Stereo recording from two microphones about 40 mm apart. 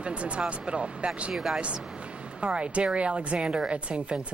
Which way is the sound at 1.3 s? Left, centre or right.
Centre.